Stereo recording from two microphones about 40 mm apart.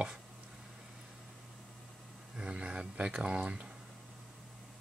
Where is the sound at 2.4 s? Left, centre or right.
Right.